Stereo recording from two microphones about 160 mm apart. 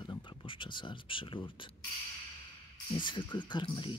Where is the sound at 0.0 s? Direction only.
30° left (ahead or behind).